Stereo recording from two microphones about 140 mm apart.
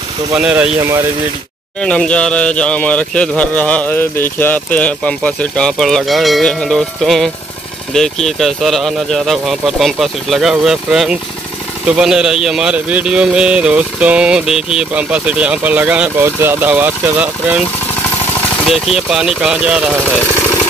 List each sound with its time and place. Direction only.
0.4 s speech: 5° right (ahead or behind)
0.7 s speech: 20° right (ahead or behind)
1.8 s speech: 5° left (ahead or behind); by 17.6 s 15° right (ahead or behind)
18.7 s speech: 5° right (ahead or behind)